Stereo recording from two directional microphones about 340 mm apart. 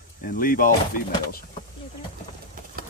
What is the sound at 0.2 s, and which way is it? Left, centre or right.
Speech, left.